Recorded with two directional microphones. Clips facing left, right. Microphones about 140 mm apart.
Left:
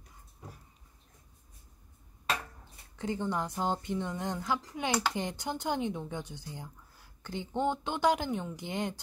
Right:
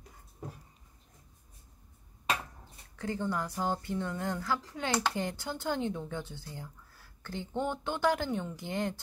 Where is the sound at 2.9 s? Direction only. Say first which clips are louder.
Left 1 dB; 20° left (ahead or behind).